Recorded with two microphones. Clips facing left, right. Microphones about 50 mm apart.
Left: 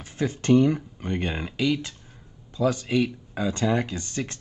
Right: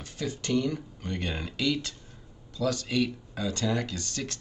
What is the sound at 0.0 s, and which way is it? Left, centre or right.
Speech, left.